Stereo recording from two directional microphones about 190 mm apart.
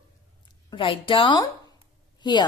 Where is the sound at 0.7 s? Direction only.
25° left (ahead or behind).